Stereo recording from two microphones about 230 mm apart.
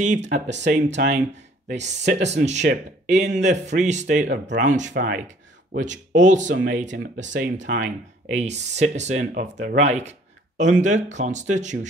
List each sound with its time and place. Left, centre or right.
0.0 s speech: right
0.5 s speech: right
2.2 s speech: right
4.3 s speech: right
4.6 s speech: right
4.9 s speech: right
5.2 s a sound: right
6.1 s speech: right
6.4 s speech: right